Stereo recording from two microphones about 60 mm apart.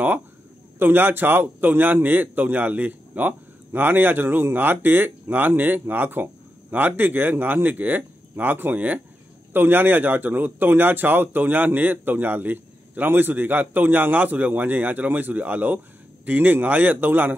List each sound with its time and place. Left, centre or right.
0.7 s a man's voice: right